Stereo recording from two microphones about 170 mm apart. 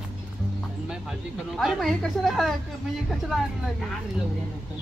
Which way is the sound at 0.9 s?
Centre (ahead or behind).